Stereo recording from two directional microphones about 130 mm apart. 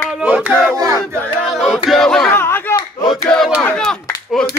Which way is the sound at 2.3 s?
20° left (ahead or behind).